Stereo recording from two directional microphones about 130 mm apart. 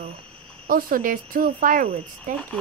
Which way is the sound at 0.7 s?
90° right.